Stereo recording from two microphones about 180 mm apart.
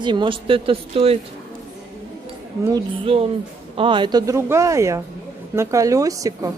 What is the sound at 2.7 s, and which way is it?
Speech, 30° right (ahead or behind).